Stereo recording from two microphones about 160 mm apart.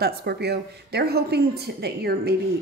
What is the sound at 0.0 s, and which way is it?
A woman's voice, 85° right.